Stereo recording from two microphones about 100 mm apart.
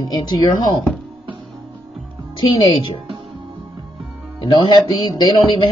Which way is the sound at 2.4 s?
50° left (ahead or behind).